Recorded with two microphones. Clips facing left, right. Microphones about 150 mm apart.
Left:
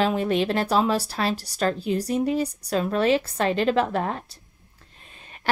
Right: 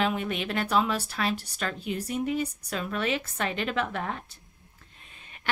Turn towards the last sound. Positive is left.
turn(degrees=35)  # may be behind; listen again after turning